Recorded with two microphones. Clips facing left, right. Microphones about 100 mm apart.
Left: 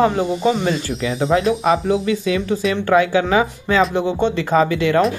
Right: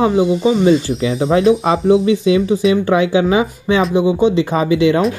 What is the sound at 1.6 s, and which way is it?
Speech, 35° right (ahead or behind).